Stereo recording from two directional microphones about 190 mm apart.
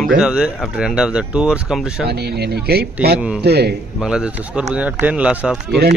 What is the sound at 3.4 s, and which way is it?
Speech, 60° right (ahead or behind).